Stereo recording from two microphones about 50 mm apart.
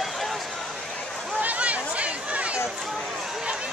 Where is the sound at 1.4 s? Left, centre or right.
Right.